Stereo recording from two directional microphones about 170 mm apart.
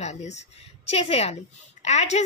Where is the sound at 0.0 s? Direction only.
40° left (ahead or behind).